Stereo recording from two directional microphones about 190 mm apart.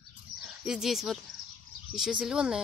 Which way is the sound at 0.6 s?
5° right (ahead or behind).